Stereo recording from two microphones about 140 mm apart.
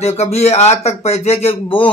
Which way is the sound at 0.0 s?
50° left (ahead or behind).